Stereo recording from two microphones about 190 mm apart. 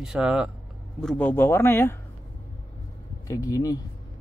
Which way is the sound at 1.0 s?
10° left (ahead or behind).